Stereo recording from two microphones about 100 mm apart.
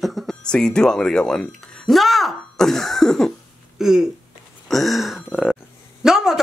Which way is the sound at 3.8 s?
5° right (ahead or behind).